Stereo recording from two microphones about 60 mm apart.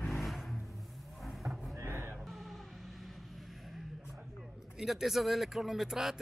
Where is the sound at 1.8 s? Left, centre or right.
Right.